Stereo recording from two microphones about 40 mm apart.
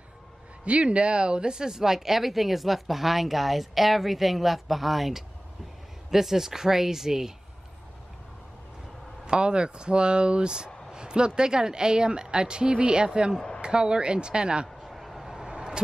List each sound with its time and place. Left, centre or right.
0.7 s speech: right; by 7.3 s centre
9.2 s a woman's voice: right
14.8 s vehicle: centre
15.5 s vehicle: right